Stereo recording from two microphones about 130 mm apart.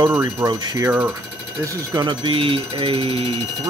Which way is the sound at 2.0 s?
40° right (ahead or behind).